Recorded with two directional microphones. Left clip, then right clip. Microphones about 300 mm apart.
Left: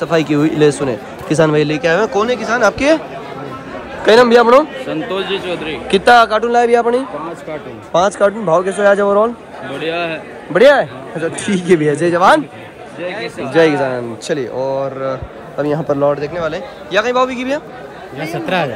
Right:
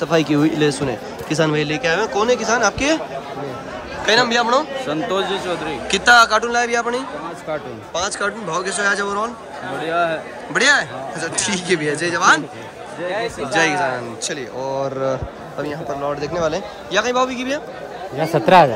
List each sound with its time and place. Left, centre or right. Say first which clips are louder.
0.0 s speech: left 3 dB; centre
4.0 s speech: left 8 dB; centre
5.2 s speech: left 2 dB; right
5.9 s speech: left 3 dB; centre
8.0 s speech: left 9 dB; centre
9.8 s speech: even; right
10.5 s speech: left 7 dB; centre
13.0 s speech: even; right
13.5 s speech: left 6 dB; centre
18.1 s a man's voice: right 6 dB; right